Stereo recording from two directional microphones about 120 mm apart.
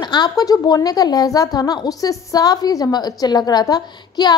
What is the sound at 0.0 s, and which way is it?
A woman's voice, 35° left (ahead or behind).